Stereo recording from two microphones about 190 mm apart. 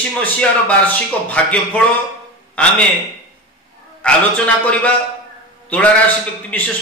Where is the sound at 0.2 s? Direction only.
10° left (ahead or behind).